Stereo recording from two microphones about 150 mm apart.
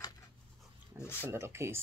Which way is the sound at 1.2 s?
15° right (ahead or behind).